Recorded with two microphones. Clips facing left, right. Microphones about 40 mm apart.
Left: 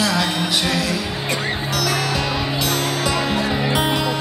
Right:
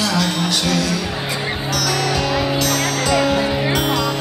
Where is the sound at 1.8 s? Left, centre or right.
Left.